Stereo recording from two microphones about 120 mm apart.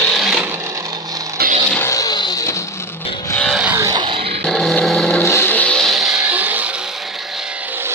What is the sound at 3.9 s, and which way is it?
Music, 40° right (ahead or behind).